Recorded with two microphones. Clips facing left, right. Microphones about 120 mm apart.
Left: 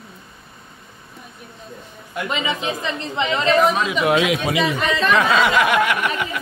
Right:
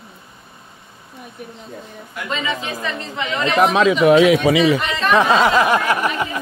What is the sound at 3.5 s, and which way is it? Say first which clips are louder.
Speech: right 5 dB; 80° right.